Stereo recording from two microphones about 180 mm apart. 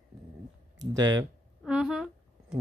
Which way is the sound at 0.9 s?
20° right (ahead or behind).